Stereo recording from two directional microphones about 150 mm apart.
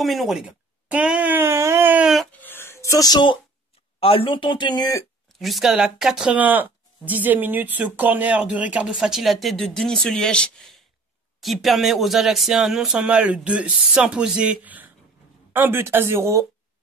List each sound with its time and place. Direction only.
0.0 s speech: centre (ahead or behind)
2.3 s a sound: 15° left (ahead or behind)
4.0 s speech: 35° left (ahead or behind)
5.4 s speech: centre (ahead or behind); by 16.4 s 20° right (ahead or behind)